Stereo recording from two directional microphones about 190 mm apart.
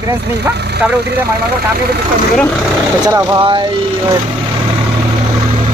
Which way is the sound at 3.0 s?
20° right (ahead or behind).